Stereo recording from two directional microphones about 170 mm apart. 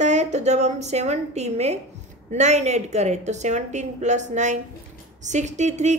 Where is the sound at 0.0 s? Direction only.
45° right (ahead or behind).